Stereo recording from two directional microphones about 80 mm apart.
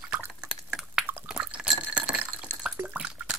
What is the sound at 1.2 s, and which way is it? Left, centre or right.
Drip, centre.